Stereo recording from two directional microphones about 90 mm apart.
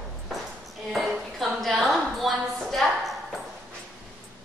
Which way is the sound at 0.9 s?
Centre (ahead or behind).